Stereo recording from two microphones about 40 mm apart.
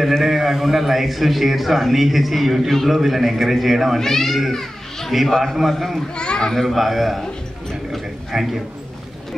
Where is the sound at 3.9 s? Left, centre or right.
Centre.